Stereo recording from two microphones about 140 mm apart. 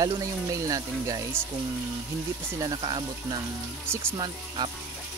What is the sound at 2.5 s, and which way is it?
Speech, 25° right (ahead or behind).